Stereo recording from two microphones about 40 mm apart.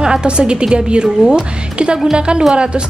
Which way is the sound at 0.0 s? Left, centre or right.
Right.